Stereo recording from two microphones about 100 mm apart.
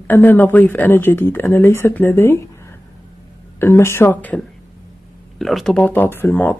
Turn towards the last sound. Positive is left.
turn(degrees=20)  # may be behind; listen again after turning